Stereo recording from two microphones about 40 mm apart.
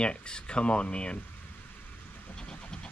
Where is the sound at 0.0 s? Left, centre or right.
Left.